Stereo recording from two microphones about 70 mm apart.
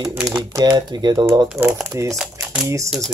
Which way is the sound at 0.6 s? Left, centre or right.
Right.